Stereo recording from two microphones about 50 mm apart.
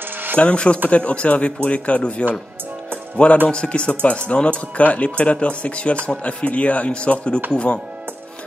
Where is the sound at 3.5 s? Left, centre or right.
Left.